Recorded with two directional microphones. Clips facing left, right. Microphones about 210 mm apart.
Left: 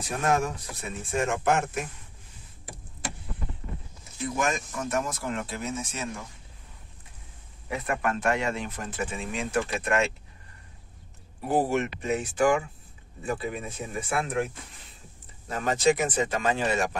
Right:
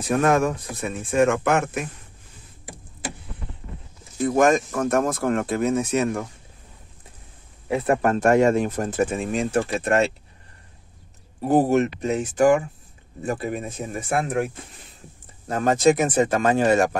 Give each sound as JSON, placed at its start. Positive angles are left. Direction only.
{"t": 0.1, "sound": "speech", "side_deg": -60}
{"t": 4.5, "sound": "speech", "side_deg": -55}
{"t": 7.7, "sound": "speech", "side_deg": -30}
{"t": 11.4, "sound": "speech", "side_deg": -45}
{"t": 15.4, "sound": "speech", "side_deg": -45}